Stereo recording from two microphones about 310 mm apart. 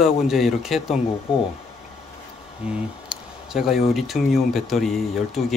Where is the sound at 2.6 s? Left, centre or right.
Centre.